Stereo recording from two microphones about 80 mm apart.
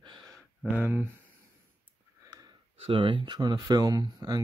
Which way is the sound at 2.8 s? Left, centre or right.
Right.